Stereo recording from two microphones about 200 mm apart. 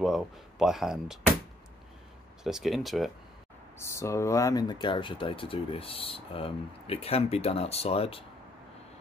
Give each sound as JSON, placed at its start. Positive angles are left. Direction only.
{"t": 0.0, "sound": "speech", "side_deg": 0}
{"t": 2.4, "sound": "speech", "side_deg": 0}
{"t": 3.7, "sound": "speech", "side_deg": 15}